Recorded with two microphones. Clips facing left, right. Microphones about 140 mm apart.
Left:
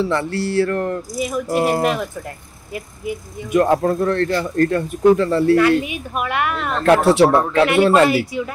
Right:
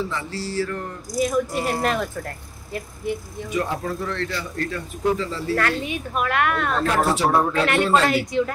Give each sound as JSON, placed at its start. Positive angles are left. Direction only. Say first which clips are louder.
{"t": 0.0, "sound": "speech", "louder": "left 8 dB", "side_deg": 65}
{"t": 1.1, "sound": "speech", "louder": "right 7 dB", "side_deg": 0}
{"t": 1.5, "sound": "speech", "louder": "left 7 dB", "side_deg": 60}
{"t": 1.8, "sound": "speech", "louder": "left 4 dB", "side_deg": 5}
{"t": 3.5, "sound": "speech", "louder": "left 10 dB", "side_deg": 55}
{"t": 5.6, "sound": "speech", "louder": "left 8 dB", "side_deg": 10}
{"t": 6.8, "sound": "speech", "louder": "left 10 dB", "side_deg": 70}
{"t": 8.1, "sound": "speech", "louder": "left 1 dB", "side_deg": 5}